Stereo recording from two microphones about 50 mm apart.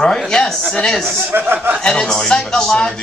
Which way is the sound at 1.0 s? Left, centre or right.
Right.